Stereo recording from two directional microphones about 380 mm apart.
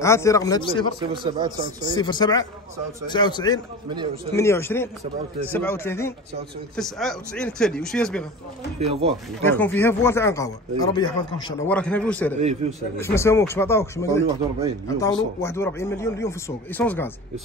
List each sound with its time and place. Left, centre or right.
0.0 s speech: centre
1.1 s speech: centre
2.0 s speech: centre
8.7 s speech: centre
9.5 s speech: centre
12.4 s speech: centre
12.9 s speech: centre
15.4 s speech: centre